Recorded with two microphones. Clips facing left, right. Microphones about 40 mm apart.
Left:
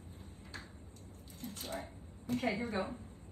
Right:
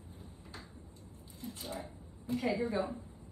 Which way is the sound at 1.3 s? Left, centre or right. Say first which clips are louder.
Even; left.